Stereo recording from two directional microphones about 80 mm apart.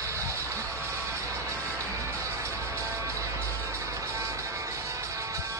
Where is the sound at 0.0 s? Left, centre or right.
Right.